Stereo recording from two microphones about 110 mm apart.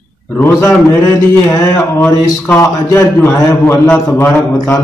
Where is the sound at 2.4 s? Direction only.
20° left (ahead or behind).